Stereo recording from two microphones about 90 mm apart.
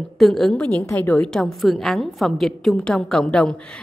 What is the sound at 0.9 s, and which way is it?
Speech, 25° left (ahead or behind).